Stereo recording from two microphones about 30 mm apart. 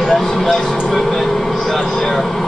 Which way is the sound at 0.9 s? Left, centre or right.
Centre.